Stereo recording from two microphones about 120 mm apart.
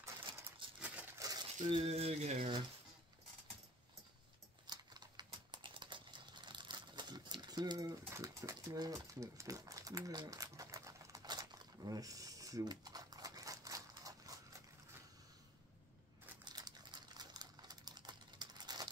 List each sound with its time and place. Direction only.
0.7 s a sound: 10° right (ahead or behind)
1.1 s crumpling: 30° right (ahead or behind)
1.9 s speech: 60° right (ahead or behind)
4.6 s typing: 35° right (ahead or behind)
8.1 s a sound: 25° right (ahead or behind)
16.4 s typing: 35° right (ahead or behind)